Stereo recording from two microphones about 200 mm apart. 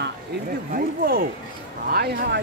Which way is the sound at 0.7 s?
50° right (ahead or behind).